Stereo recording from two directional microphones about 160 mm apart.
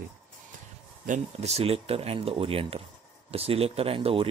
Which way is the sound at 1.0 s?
45° right (ahead or behind).